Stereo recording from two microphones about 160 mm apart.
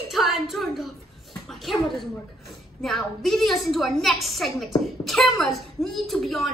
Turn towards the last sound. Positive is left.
turn(degrees=0)  # may be behind; listen again after turning